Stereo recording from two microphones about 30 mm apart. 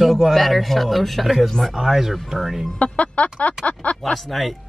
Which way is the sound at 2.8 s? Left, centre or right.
Left.